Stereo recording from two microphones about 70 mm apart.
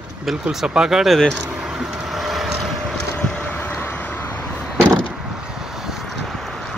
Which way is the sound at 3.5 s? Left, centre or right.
Left.